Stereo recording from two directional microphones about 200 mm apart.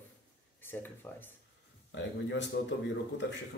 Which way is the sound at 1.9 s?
65° left (ahead or behind).